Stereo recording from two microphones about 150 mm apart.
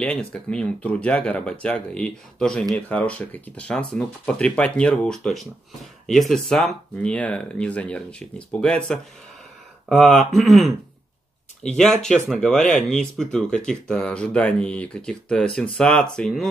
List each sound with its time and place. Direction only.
0.0 s speech: 5° left (ahead or behind)